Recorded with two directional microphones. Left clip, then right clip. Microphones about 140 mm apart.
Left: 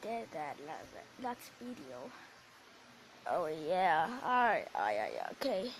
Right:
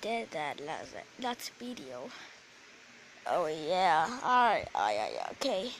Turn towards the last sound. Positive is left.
turn(degrees=-5)  # may be behind; listen again after turning